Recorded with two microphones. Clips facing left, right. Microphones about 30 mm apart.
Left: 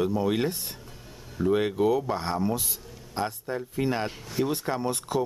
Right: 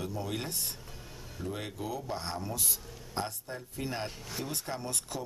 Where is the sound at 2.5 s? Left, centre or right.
Centre.